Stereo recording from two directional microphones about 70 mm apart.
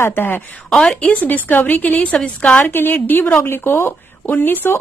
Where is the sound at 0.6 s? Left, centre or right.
Centre.